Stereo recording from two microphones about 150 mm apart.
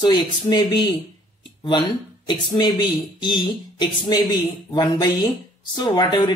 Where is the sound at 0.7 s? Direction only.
30° left (ahead or behind).